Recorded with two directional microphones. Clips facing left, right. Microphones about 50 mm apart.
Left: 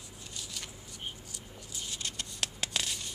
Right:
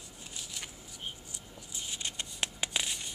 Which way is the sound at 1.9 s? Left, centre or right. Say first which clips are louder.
Right 1 dB; right.